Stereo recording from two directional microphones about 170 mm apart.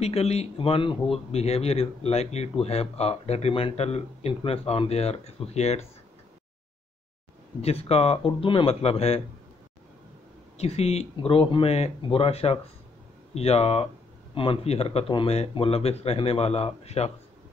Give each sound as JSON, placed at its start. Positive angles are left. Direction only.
{"t": 0.0, "sound": "speech", "side_deg": 40}
{"t": 7.6, "sound": "speech", "side_deg": 35}
{"t": 10.6, "sound": "speech", "side_deg": 35}